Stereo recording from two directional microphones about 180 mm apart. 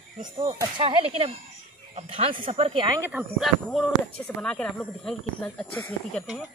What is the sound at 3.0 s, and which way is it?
Speech, 10° right (ahead or behind).